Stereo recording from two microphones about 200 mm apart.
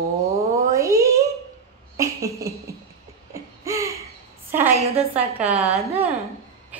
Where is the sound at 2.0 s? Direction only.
15° right (ahead or behind).